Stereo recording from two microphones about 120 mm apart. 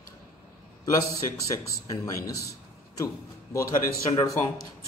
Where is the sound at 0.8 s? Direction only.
30° left (ahead or behind).